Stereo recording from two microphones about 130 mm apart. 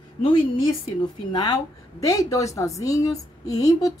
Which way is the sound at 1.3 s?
30° left (ahead or behind).